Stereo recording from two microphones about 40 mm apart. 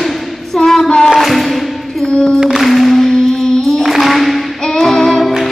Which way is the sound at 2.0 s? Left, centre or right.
Centre.